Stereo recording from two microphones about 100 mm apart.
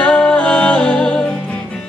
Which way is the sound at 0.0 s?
10° left (ahead or behind).